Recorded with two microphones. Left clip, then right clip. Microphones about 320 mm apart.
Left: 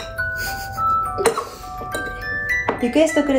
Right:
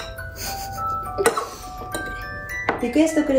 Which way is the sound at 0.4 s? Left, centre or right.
Centre.